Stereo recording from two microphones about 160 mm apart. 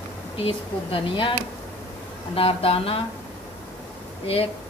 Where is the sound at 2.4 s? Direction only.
35° left (ahead or behind).